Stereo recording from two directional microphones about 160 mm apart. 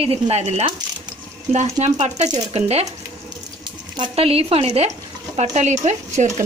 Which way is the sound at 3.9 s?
35° right (ahead or behind).